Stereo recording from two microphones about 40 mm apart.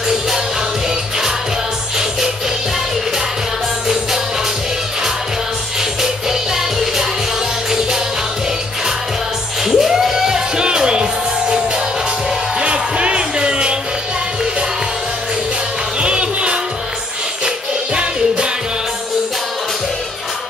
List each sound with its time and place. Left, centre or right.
6.5 s music: centre
9.7 s music: centre
16.0 s music: right